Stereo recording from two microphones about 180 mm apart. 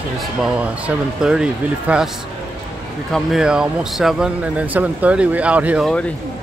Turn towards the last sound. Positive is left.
turn(degrees=-5)  # may be behind; listen again after turning